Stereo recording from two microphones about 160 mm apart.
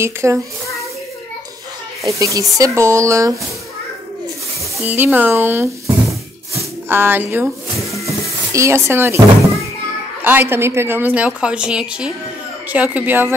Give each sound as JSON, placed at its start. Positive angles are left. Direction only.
{"t": 0.0, "sound": "a woman's voice", "side_deg": -15}
{"t": 2.0, "sound": "speech", "side_deg": -20}
{"t": 4.8, "sound": "a woman's voice", "side_deg": -10}
{"t": 6.5, "sound": "a sound", "side_deg": -15}
{"t": 8.5, "sound": "a woman's voice", "side_deg": -15}
{"t": 10.2, "sound": "a woman's voice", "side_deg": -10}